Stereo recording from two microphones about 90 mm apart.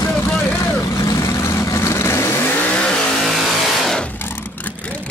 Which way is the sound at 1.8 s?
35° left (ahead or behind).